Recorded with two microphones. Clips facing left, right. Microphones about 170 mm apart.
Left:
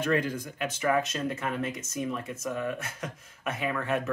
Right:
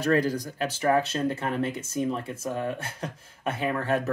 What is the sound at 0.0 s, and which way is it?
Speech, 35° right (ahead or behind).